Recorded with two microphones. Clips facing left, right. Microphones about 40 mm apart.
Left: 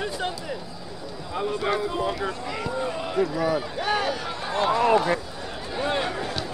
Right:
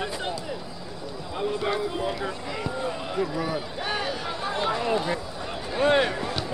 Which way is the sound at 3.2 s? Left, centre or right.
Centre.